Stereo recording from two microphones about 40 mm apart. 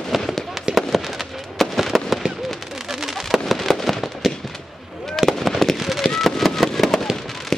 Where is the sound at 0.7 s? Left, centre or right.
Right.